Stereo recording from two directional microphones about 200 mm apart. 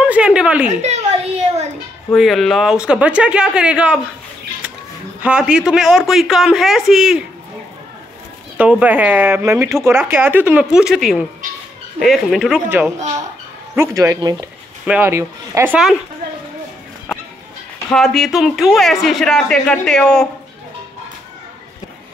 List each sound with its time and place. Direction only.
0.0 s a sound: 5° right (ahead or behind)
0.7 s a sound: 35° right (ahead or behind)
2.1 s speech: centre (ahead or behind)
5.2 s speech: 5° right (ahead or behind)
8.5 s speech: 5° right (ahead or behind)
17.9 s speech: centre (ahead or behind)